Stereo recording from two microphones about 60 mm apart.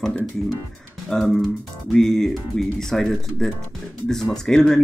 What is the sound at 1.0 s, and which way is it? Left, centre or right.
Speech, centre.